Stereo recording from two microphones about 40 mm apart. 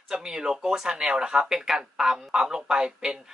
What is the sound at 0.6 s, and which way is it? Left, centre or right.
Speech, centre.